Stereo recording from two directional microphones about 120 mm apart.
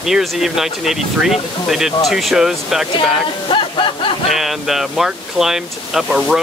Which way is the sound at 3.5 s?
45° left (ahead or behind).